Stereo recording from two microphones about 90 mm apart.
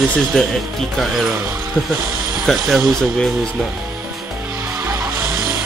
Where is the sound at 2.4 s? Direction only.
Centre (ahead or behind).